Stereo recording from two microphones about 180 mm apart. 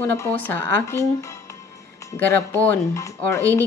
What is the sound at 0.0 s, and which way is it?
A woman's voice, 10° left (ahead or behind).